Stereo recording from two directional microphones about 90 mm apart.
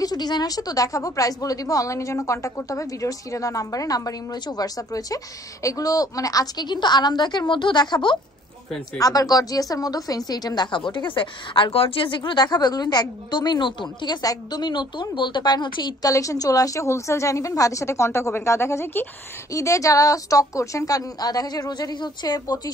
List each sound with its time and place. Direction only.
0.0 s a woman's voice: 50° left (ahead or behind)
8.9 s a woman's voice: 40° left (ahead or behind)
10.9 s a woman's voice: 65° left (ahead or behind)
16.1 s a woman's voice: 40° left (ahead or behind)